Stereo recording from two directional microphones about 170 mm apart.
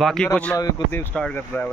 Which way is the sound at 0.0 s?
5° left (ahead or behind).